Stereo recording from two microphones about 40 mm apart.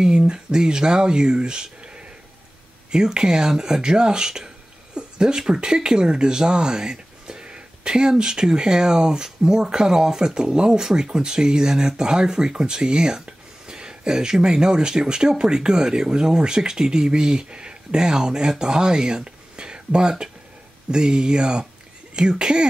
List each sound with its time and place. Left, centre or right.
0.0 s speech: centre
2.9 s speech: centre